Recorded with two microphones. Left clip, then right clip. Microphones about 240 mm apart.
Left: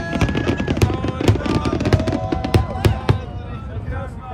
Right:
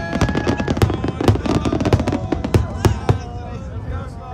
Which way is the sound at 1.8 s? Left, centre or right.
Right.